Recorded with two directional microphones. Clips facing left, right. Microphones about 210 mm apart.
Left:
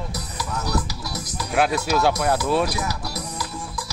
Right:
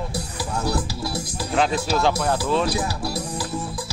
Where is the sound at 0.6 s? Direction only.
30° right (ahead or behind).